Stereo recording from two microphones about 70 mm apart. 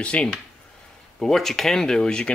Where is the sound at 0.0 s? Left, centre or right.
Centre.